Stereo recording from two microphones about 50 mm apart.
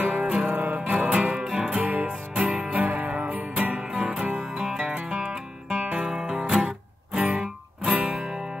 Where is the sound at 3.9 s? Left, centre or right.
Centre.